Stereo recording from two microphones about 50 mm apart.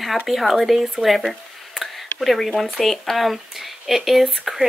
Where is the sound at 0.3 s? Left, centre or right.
Centre.